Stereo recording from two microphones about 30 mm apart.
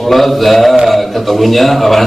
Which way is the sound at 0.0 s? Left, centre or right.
Centre.